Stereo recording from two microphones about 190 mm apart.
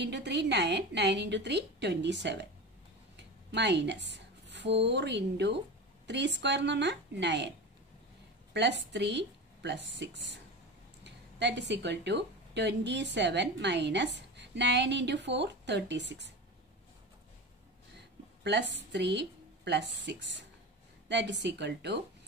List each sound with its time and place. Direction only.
0.0 s a woman's voice: 65° right (ahead or behind)
8.5 s speech: 65° right (ahead or behind)
17.9 s a woman's voice: 65° right (ahead or behind)